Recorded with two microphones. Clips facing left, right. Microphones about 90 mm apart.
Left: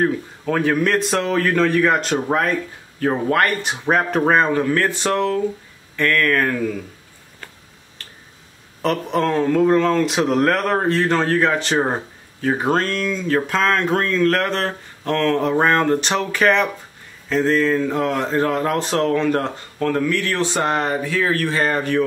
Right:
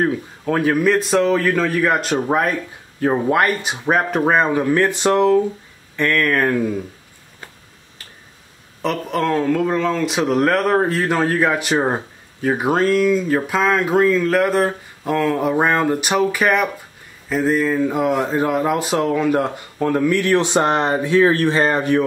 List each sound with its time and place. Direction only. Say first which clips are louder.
0.0 s speech: even; 5° right (ahead or behind)
8.0 s finger snapping: left 1 dB; 5° right (ahead or behind)
8.8 s speech: left 1 dB; centre (ahead or behind); by 22.0 s 20° right (ahead or behind)